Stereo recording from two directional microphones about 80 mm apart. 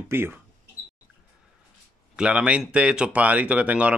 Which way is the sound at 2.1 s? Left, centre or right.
Centre.